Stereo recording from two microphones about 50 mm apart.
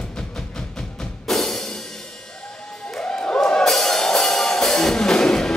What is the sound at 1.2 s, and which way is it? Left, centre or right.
Music, centre.